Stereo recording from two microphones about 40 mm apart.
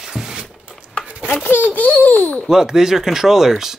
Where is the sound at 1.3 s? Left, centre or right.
Left.